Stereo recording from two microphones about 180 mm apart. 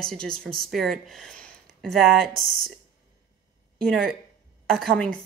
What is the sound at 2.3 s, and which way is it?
Speech, 55° right (ahead or behind).